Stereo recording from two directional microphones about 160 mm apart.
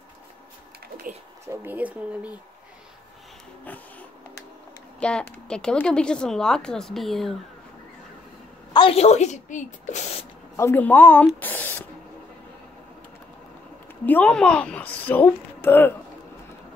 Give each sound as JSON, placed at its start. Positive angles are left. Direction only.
{"t": 1.5, "sound": "speech", "side_deg": -10}
{"t": 5.0, "sound": "speech", "side_deg": 5}
{"t": 8.7, "sound": "speech", "side_deg": 35}
{"t": 10.5, "sound": "speech", "side_deg": 15}
{"t": 14.0, "sound": "a woman's voice", "side_deg": 10}